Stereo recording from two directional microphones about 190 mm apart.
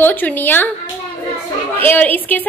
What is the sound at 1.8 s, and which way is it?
Speech, 10° left (ahead or behind).